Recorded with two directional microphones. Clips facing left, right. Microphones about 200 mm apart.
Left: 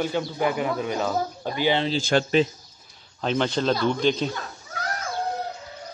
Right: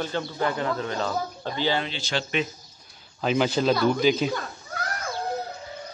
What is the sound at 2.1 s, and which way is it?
Speech, 50° left (ahead or behind).